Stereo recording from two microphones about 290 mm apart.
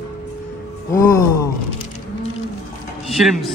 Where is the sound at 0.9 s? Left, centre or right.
Centre.